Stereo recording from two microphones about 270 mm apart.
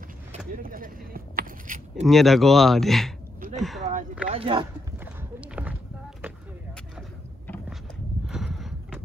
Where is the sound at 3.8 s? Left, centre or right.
Right.